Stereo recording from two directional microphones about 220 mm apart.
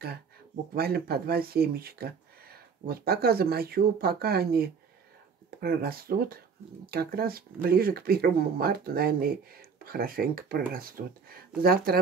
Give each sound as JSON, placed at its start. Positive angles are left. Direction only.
{"t": 0.7, "sound": "speech", "side_deg": -45}